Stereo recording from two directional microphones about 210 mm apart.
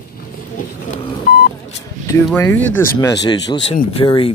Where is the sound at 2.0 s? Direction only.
10° left (ahead or behind).